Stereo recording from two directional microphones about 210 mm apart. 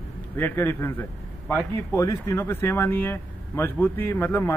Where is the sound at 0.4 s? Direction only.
10° left (ahead or behind).